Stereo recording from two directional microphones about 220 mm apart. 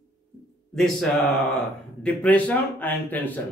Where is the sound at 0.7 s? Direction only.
Centre (ahead or behind).